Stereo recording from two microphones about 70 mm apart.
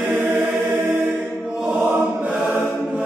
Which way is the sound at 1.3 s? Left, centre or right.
Centre.